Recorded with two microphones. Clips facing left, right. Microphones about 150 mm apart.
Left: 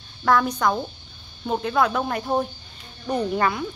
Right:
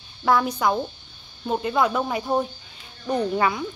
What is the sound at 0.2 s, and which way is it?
Speech, 5° right (ahead or behind).